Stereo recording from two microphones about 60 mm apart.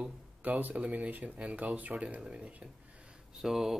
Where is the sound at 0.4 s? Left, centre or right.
Right.